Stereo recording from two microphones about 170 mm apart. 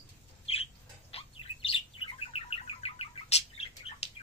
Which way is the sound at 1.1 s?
30° left (ahead or behind).